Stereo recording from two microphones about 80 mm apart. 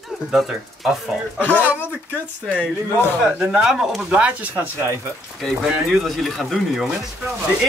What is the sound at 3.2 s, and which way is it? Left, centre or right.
Speech, centre.